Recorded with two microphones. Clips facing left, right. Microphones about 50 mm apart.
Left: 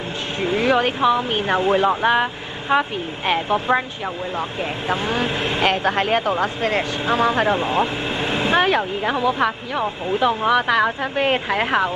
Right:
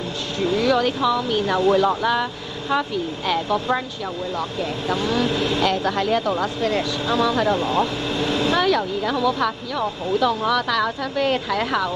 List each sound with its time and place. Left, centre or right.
0.4 s speech: left
4.8 s speech: left